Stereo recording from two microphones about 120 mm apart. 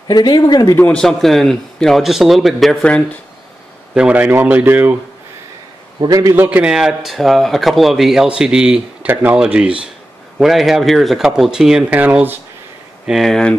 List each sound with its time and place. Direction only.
0.1 s speech: 35° left (ahead or behind)
0.7 s speech: 10° left (ahead or behind)
3.9 s speech: 10° right (ahead or behind)
5.9 s a man's voice: 30° right (ahead or behind)
6.3 s speech: 15° right (ahead or behind)
13.0 s speech: centre (ahead or behind)